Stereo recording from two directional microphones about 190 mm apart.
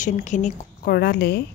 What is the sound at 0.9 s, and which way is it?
Speech, 55° left (ahead or behind).